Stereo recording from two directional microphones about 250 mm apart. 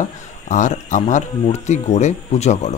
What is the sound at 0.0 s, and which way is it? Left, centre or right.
Speech, left.